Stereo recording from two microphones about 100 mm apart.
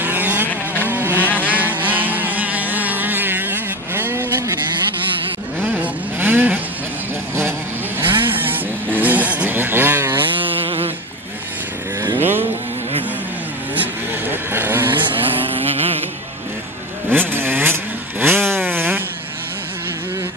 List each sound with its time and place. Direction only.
0.0 s vehicle: 20° right (ahead or behind)
1.1 s vehicle: 15° left (ahead or behind)
1.5 s vehicle: 15° right (ahead or behind)
5.6 s vehicle: 15° right (ahead or behind)
8.0 s vehicle: 20° right (ahead or behind)
10.6 s a sound: 65° right (ahead or behind)
12.2 s vehicle: 20° right (ahead or behind)
13.7 s vehicle: 20° right (ahead or behind)
15.0 s a sound: 65° right (ahead or behind)
17.1 s vehicle: 20° right (ahead or behind)